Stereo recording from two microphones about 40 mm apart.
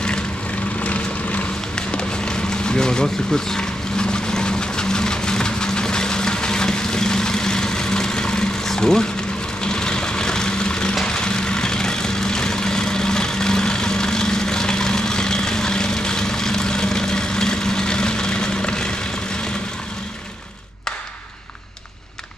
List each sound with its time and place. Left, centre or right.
0.8 s vehicle: left
1.8 s run: left
8.6 s a sound: centre
9.6 s vehicle: centre